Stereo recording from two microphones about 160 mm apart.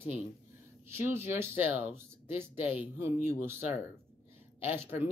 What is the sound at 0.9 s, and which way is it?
Speech, 15° right (ahead or behind).